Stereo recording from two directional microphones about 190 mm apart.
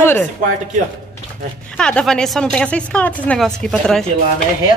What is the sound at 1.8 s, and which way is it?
Speech, 5° left (ahead or behind).